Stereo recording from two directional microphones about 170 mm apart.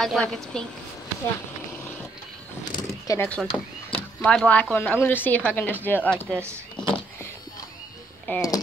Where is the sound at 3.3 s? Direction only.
10° left (ahead or behind).